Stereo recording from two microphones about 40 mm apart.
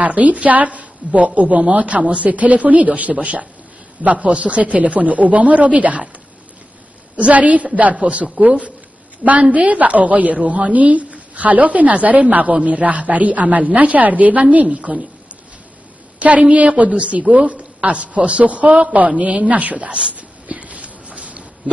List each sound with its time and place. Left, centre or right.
0.0 s a woman's voice: right
7.2 s a woman's voice: right
16.2 s a woman's voice: right
19.9 s a sound: right